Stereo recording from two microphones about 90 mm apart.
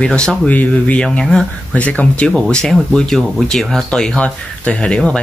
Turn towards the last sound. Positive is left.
turn(degrees=10)  # may be behind; listen again after turning